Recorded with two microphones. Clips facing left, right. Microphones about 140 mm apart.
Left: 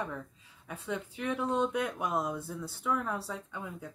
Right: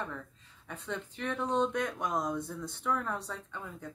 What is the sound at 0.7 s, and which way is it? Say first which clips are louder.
Speech: left 2 dB; 5° left (ahead or behind).